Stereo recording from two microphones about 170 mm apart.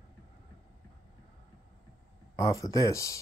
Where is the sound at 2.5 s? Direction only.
20° left (ahead or behind).